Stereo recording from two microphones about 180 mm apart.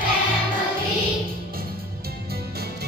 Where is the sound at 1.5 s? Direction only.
55° right (ahead or behind).